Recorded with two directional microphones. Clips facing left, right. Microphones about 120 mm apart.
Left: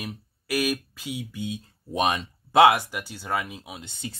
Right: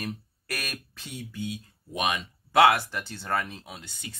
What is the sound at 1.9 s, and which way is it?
Speech, 30° left (ahead or behind).